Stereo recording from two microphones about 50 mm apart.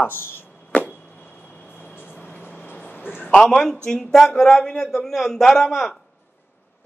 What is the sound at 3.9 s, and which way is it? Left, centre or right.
Speech, centre.